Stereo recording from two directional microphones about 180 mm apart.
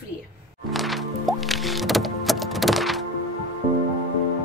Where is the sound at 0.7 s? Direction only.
Centre (ahead or behind).